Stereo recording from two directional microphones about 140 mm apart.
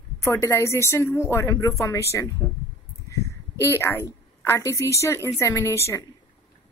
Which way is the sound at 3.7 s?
20° left (ahead or behind).